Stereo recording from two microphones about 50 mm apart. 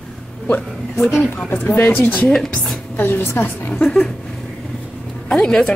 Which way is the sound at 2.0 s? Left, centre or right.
Left.